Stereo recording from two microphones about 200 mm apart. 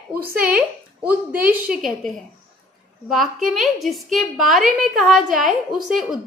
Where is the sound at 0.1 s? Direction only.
10° right (ahead or behind).